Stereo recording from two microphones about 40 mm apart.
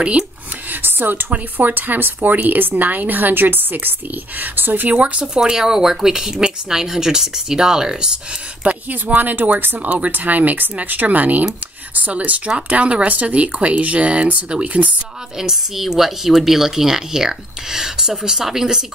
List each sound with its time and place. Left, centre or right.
0.7 s a sound: right
1.3 s a woman's voice: right
4.9 s speech: right
5.3 s speech: centre
8.6 s a woman's voice: right
9.8 s speech: right
10.1 s a woman's voice: right
15.3 s speech: centre